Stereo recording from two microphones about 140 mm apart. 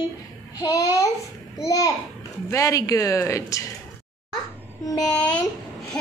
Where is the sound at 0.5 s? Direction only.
25° left (ahead or behind).